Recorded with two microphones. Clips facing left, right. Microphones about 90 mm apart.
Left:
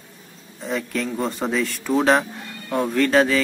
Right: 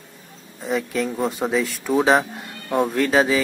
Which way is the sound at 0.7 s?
5° right (ahead or behind).